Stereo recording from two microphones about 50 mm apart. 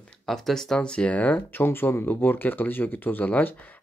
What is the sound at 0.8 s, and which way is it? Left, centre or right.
Speech, left.